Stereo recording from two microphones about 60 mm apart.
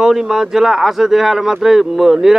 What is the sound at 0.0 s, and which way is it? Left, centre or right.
Speech, centre.